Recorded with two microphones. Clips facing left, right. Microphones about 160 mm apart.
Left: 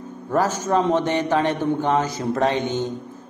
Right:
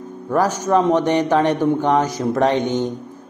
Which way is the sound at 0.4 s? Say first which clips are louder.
Right 3 dB; 15° right (ahead or behind).